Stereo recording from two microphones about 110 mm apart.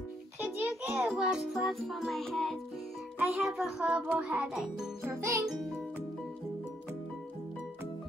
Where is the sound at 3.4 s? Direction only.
Centre (ahead or behind).